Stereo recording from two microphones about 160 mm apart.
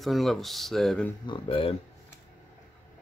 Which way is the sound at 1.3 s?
35° left (ahead or behind).